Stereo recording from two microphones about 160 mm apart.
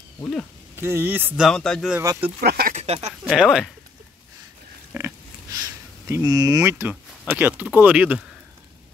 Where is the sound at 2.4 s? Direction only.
75° right (ahead or behind).